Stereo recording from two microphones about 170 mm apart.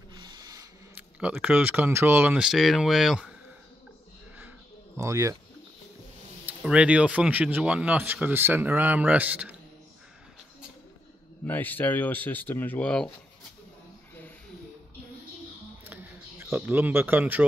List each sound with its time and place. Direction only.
0.2 s a sound: 25° right (ahead or behind)
0.9 s speech: 10° right (ahead or behind)
4.9 s speech: 20° right (ahead or behind)
6.4 s speech: 5° right (ahead or behind)
11.4 s speech: 10° left (ahead or behind)
15.9 s a sound: 10° right (ahead or behind)
16.5 s speech: 10° right (ahead or behind)